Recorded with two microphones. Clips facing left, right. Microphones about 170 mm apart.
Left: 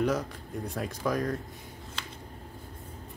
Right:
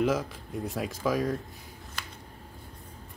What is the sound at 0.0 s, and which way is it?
Speech, 5° right (ahead or behind).